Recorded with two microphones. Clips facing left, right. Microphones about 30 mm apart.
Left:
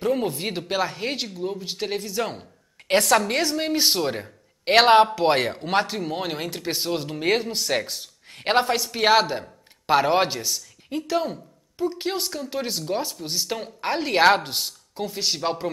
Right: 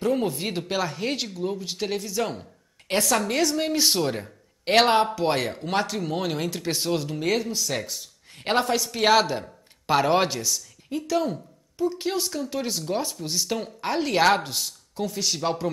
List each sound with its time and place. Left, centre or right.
0.0 s speech: centre
2.9 s speech: left
3.5 s speech: centre
4.9 s speech: left; by 7.0 s centre
7.0 s a man's voice: left